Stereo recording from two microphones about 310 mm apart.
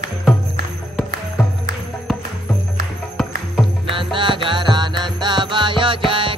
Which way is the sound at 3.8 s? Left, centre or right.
Centre.